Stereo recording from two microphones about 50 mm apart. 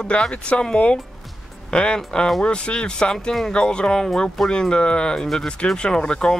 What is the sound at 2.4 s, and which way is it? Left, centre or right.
Speech, left.